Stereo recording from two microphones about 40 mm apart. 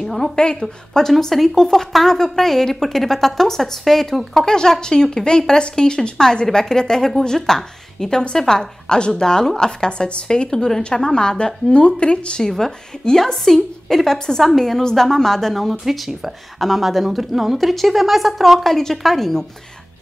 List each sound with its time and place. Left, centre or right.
0.0 s a sound: centre
0.4 s a woman's voice: left
1.3 s a woman's voice: centre
4.5 s a woman's voice: centre
12.4 s a woman's voice: centre
15.8 s a woman's voice: centre
18.7 s a woman's voice: centre